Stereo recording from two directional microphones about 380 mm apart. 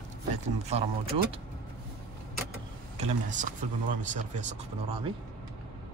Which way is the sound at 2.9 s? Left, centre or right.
Centre.